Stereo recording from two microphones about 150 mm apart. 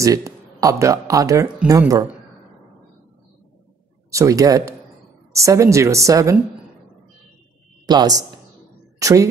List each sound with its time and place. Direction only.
0.0 s a woman's voice: 25° right (ahead or behind)
4.1 s a woman's voice: 20° right (ahead or behind)
7.8 s a woman's voice: 25° right (ahead or behind)